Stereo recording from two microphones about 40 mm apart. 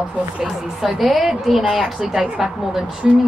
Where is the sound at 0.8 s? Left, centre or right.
Centre.